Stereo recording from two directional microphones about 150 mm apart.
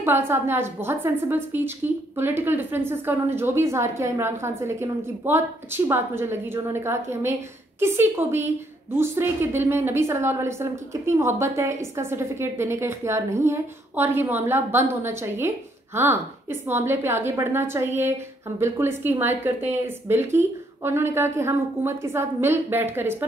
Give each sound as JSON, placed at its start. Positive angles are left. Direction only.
{"t": 0.0, "sound": "a woman's voice", "side_deg": -15}